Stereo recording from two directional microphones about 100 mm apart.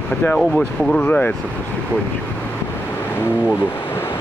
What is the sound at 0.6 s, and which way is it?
Speech, 15° left (ahead or behind).